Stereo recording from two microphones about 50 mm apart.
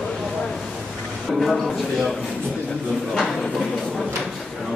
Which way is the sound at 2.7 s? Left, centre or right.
Centre.